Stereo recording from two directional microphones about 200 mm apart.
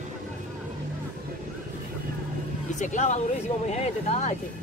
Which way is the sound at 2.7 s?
35° left (ahead or behind).